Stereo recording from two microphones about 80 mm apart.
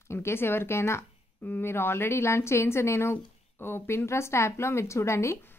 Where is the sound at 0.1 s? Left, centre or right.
Left.